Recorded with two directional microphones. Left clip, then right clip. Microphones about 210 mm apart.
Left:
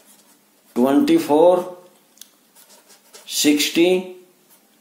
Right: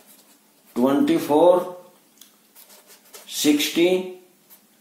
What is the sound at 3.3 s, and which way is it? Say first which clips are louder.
Speech: left 3 dB; 45° left (ahead or behind).